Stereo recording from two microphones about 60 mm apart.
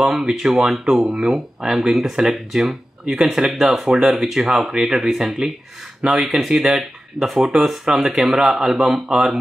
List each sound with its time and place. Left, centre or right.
0.0 s speech: centre